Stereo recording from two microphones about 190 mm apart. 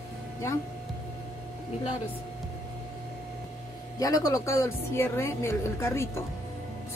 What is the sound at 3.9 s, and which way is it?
A woman's voice, 20° left (ahead or behind).